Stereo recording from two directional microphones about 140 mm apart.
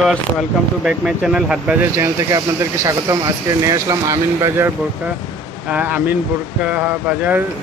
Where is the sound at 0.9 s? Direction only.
5° right (ahead or behind).